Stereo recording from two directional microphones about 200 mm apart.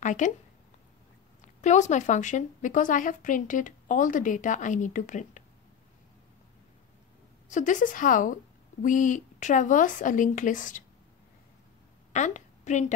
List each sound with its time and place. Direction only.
0.0 s speech: 40° left (ahead or behind)
1.4 s speech: 35° left (ahead or behind)
7.4 s speech: 40° left (ahead or behind)
12.1 s a woman's voice: 35° left (ahead or behind)